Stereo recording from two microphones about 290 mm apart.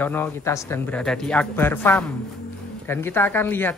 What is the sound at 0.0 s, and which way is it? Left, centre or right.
Speech, centre.